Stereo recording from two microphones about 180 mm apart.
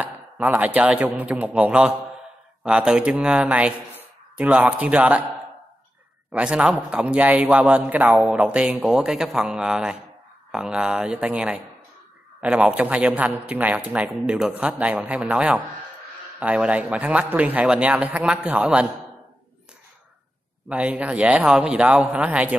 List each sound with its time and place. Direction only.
0.0 s a man's voice: 10° right (ahead or behind)
6.3 s a man's voice: 5° right (ahead or behind)
20.6 s a man's voice: 5° right (ahead or behind)